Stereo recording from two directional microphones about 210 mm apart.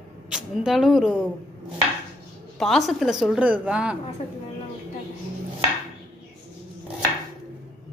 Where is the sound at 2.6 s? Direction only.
Centre (ahead or behind).